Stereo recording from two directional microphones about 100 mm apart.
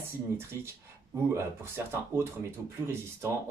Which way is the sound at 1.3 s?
25° right (ahead or behind).